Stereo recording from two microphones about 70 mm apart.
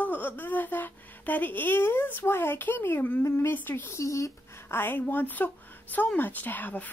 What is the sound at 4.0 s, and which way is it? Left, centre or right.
Speech, left.